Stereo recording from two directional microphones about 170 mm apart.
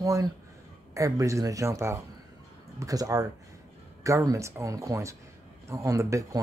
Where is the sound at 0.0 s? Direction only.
20° right (ahead or behind).